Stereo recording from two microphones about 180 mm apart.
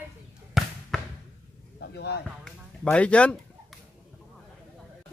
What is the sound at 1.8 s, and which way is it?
Speech, 65° left (ahead or behind).